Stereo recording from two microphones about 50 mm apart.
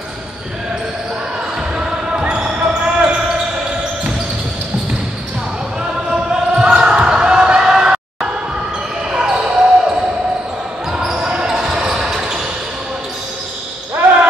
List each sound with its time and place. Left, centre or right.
1.8 s basketball bounce: centre
6.0 s basketball bounce: centre